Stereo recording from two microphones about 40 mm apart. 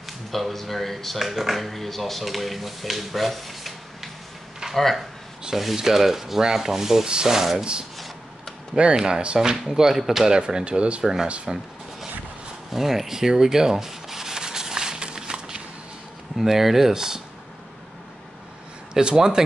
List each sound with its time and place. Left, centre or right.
0.3 s speech: centre
5.8 s speech: centre
8.7 s speech: right
10.3 s speech: centre
10.6 s speech: right
11.4 s a sound: centre
12.7 s rub: centre
16.3 s speech: centre
18.9 s speech: centre